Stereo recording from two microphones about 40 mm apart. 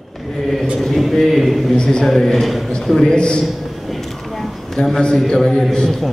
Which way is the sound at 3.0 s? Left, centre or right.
Left.